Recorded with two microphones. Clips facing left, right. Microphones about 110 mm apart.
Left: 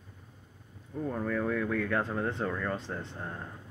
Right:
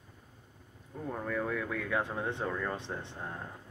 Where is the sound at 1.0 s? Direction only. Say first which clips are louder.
Left 3 dB; 5° right (ahead or behind).